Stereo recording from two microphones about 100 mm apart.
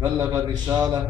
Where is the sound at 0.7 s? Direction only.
40° right (ahead or behind).